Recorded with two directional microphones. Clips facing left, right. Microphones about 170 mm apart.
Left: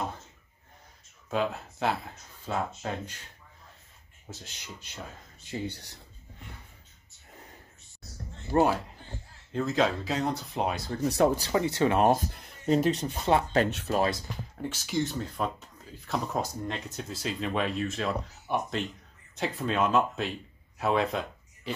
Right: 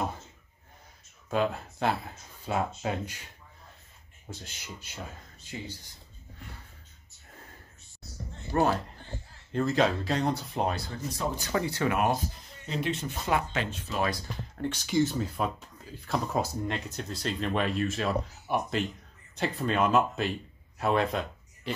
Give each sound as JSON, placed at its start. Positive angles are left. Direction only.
{"t": 1.3, "sound": "speech", "side_deg": 0}
{"t": 4.3, "sound": "speech", "side_deg": 0}
{"t": 5.7, "sound": "speech", "side_deg": 70}
{"t": 8.5, "sound": "speech", "side_deg": 35}
{"t": 9.5, "sound": "speech", "side_deg": 0}
{"t": 10.9, "sound": "speech", "side_deg": 50}
{"t": 11.5, "sound": "speech", "side_deg": 20}
{"t": 12.4, "sound": "speech", "side_deg": 45}
{"t": 13.7, "sound": "speech", "side_deg": 70}
{"t": 13.9, "sound": "speech", "side_deg": 30}
{"t": 14.6, "sound": "speech", "side_deg": 5}